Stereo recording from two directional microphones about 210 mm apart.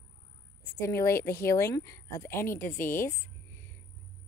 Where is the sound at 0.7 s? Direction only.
15° left (ahead or behind).